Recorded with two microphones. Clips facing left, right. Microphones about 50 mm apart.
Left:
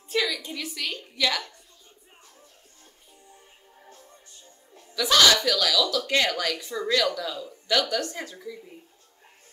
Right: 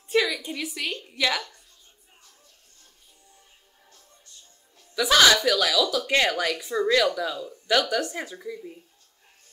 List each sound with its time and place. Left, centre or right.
0.1 s a sound: centre
0.5 s speech: centre
3.8 s music: left
4.9 s speech: centre